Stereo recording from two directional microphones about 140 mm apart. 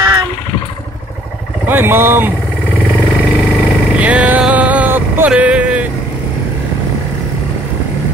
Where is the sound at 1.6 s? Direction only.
15° right (ahead or behind).